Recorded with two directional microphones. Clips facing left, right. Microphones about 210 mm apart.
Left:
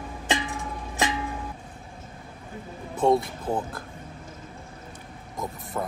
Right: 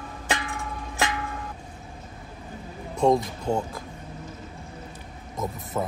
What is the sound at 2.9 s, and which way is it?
Speech, centre (ahead or behind).